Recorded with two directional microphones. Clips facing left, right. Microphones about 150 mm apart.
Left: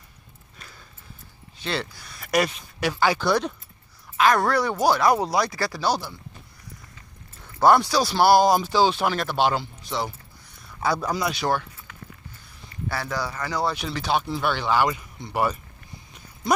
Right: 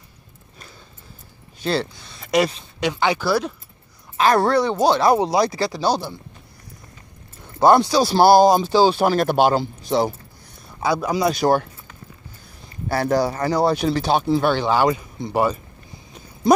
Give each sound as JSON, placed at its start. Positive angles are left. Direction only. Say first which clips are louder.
{"t": 1.6, "sound": "speech", "louder": "right 7 dB", "side_deg": -35}
{"t": 2.0, "sound": "speech", "louder": "right 4 dB", "side_deg": -25}
{"t": 3.2, "sound": "speech", "louder": "right 2 dB", "side_deg": -5}
{"t": 4.2, "sound": "speech", "louder": "right 3 dB", "side_deg": -30}
{"t": 7.4, "sound": "speech", "louder": "right 3 dB", "side_deg": -20}
{"t": 10.8, "sound": "speech", "louder": "right 3 dB", "side_deg": -10}
{"t": 11.2, "sound": "speech", "louder": "right 10 dB", "side_deg": -40}
{"t": 12.8, "sound": "speech", "louder": "right 9 dB", "side_deg": -45}